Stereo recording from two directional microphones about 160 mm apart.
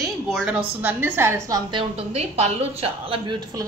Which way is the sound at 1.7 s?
35° right (ahead or behind).